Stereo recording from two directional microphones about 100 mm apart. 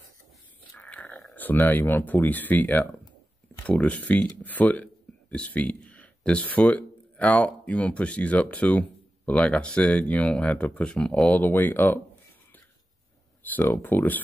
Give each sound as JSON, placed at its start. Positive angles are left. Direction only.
{"t": 0.7, "sound": "dog", "side_deg": 15}
{"t": 1.3, "sound": "speech", "side_deg": 15}
{"t": 13.4, "sound": "speech", "side_deg": 20}